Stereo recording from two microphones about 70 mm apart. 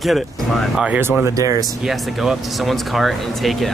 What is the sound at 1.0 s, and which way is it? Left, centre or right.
Speech, right.